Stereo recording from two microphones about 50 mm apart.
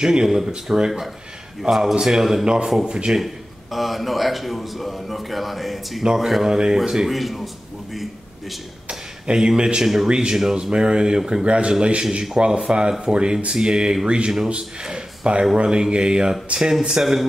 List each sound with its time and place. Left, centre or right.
0.0 s speech: centre
3.7 s a man's voice: centre
7.1 s a man's voice: centre
8.8 s a sound: centre
10.0 s a man's voice: centre
17.0 s a man's voice: centre